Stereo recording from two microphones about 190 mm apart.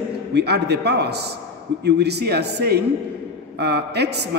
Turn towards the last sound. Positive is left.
turn(degrees=-60)  # may be behind; listen again after turning